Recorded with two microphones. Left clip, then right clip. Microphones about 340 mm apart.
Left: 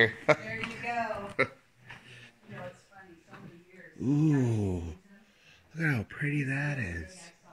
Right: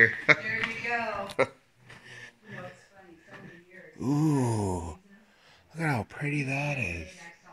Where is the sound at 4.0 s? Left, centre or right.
Right.